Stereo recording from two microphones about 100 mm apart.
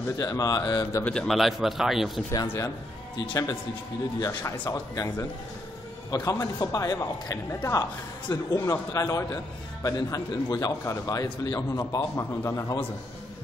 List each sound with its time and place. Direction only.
0.2 s a man's voice: 35° left (ahead or behind)
1.0 s a man's voice: 5° left (ahead or behind)
2.4 s speech: 25° left (ahead or behind)
3.2 s a man's voice: 35° left (ahead or behind)
4.9 s speech: 30° left (ahead or behind)
6.0 s a man's voice: 40° left (ahead or behind)